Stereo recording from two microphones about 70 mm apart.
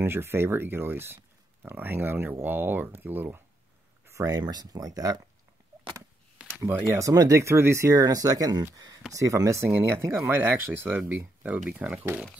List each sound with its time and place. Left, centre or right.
0.0 s speech: right
4.0 s a sound: right
4.3 s speech: right
6.7 s speech: right
7.0 s speech: right
7.4 s speech: right
8.0 s speech: right
9.1 s speech: right